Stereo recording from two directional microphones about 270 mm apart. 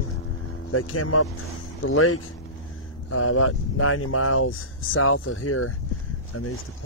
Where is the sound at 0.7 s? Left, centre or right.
Left.